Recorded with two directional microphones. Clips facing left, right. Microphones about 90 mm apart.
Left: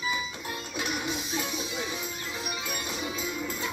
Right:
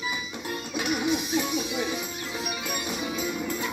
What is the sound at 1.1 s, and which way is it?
Music, 15° right (ahead or behind).